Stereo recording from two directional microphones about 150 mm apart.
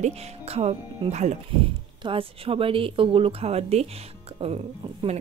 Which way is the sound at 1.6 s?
35° right (ahead or behind).